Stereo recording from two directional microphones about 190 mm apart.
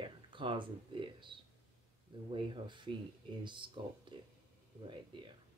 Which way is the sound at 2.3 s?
25° right (ahead or behind).